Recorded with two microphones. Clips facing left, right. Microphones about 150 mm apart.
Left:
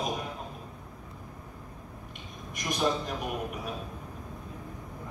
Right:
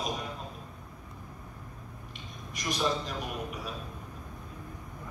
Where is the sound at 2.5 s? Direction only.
55° left (ahead or behind).